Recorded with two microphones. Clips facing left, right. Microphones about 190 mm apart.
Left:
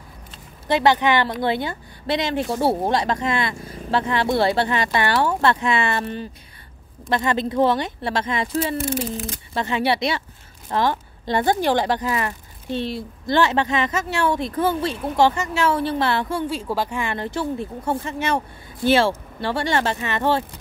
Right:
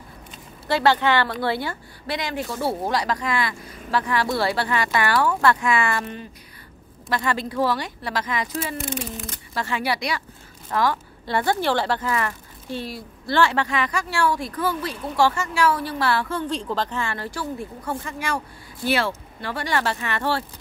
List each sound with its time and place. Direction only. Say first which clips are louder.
0.7 s speech: left 2 dB; 20° left (ahead or behind)